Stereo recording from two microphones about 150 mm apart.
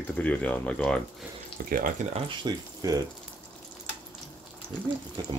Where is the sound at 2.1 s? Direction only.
30° right (ahead or behind).